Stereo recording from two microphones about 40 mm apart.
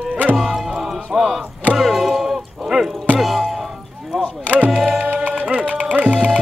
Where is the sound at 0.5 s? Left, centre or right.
Centre.